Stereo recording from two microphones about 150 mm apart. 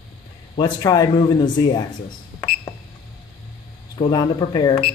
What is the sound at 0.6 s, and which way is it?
Speech, 25° left (ahead or behind).